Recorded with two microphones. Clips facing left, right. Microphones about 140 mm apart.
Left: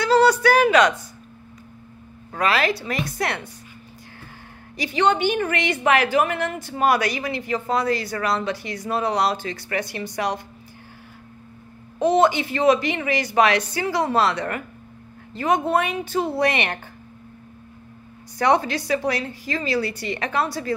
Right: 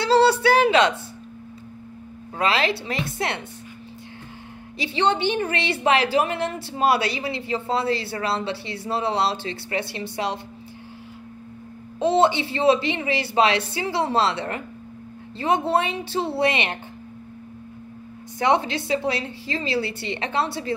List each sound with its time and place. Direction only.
0.0 s a sound: 30° right (ahead or behind)
2.3 s speech: 25° right (ahead or behind)
4.7 s a woman's voice: 25° right (ahead or behind)
12.0 s speech: 25° right (ahead or behind)
18.4 s speech: 25° right (ahead or behind)